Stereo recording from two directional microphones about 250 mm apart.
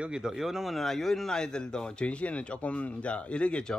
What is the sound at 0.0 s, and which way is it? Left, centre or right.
Speech, centre.